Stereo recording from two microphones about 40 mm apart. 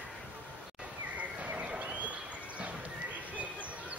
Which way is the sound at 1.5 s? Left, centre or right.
Right.